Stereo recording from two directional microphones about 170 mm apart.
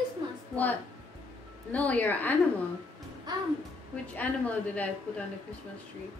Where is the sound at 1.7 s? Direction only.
10° left (ahead or behind).